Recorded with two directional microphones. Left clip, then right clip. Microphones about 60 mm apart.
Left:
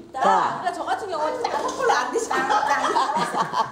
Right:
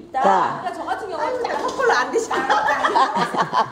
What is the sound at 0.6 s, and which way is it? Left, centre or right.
Speech, left.